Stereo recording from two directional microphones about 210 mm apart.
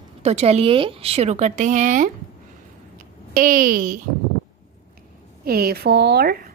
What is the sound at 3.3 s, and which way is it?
Speech, 40° right (ahead or behind).